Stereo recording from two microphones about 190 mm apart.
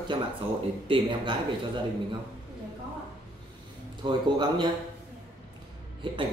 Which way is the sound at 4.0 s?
25° right (ahead or behind).